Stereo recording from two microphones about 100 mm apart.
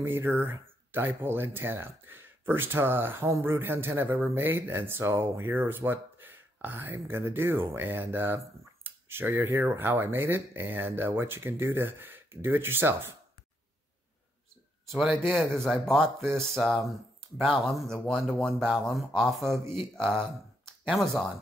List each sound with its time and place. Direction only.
0.0 s speech: 20° right (ahead or behind)
14.9 s speech: centre (ahead or behind)